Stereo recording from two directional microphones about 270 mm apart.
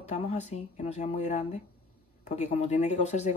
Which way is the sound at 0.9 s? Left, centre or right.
Left.